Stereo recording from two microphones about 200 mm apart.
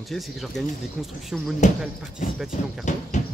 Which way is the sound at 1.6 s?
35° left (ahead or behind).